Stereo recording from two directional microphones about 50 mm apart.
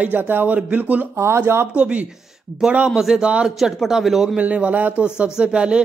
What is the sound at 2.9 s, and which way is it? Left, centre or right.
Speech, centre.